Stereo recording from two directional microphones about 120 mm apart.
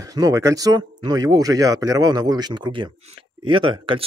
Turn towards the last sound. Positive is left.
turn(degrees=-45)  # may be behind; listen again after turning